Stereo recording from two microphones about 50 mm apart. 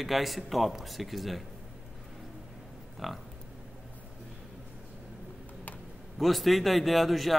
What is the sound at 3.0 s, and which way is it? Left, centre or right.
Speech, centre.